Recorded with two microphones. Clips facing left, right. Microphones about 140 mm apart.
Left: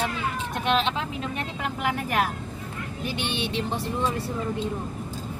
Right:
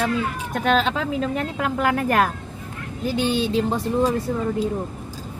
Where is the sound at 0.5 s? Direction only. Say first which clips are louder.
Right 5 dB; 45° right (ahead or behind).